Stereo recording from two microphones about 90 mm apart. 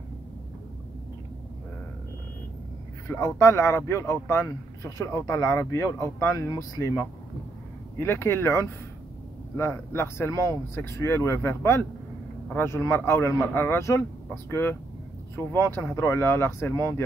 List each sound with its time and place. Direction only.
3.1 s speech: 30° left (ahead or behind)